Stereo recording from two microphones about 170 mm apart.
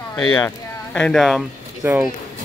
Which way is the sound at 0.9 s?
5° left (ahead or behind).